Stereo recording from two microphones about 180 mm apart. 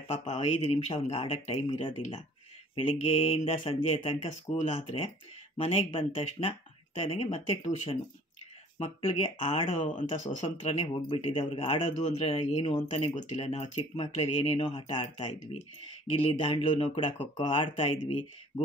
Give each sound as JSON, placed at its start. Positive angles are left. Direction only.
{"t": 0.1, "sound": "speech", "side_deg": 35}
{"t": 16.3, "sound": "speech", "side_deg": 30}